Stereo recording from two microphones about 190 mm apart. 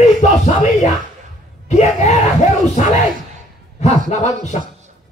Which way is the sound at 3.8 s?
35° left (ahead or behind).